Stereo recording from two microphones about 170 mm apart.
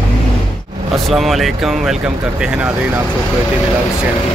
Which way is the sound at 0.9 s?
Centre (ahead or behind).